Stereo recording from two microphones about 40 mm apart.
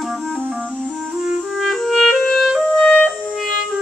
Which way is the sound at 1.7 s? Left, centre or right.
Centre.